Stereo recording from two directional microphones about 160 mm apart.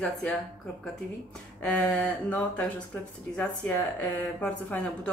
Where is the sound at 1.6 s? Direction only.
10° left (ahead or behind).